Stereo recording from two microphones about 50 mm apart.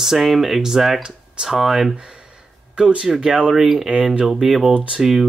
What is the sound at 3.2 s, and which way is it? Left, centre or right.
Speech, centre.